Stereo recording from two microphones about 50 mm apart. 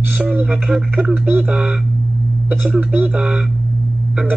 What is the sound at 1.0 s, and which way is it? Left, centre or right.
Speech, right.